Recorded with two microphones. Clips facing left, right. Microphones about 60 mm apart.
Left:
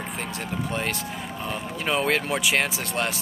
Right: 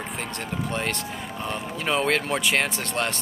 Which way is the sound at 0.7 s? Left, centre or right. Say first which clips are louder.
Right 1 dB; centre.